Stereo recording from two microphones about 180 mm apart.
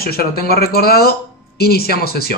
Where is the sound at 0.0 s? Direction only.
60° left (ahead or behind).